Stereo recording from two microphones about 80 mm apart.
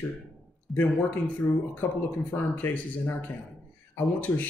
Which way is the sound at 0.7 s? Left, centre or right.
Left.